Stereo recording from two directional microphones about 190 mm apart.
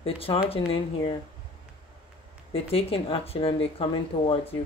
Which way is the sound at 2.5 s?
30° left (ahead or behind).